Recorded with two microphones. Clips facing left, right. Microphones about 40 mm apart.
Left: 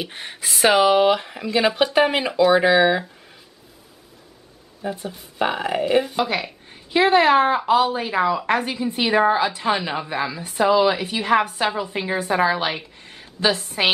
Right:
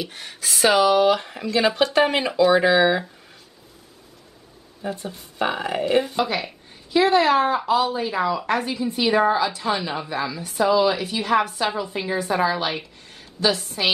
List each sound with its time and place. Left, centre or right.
0.0 s a woman's voice: left; by 3.1 s centre
4.8 s speech: centre
6.9 s a woman's voice: left